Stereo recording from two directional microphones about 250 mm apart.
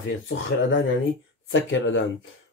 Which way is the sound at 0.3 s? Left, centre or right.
Left.